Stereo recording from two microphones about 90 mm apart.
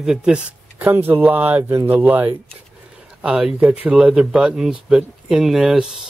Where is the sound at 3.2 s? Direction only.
5° right (ahead or behind).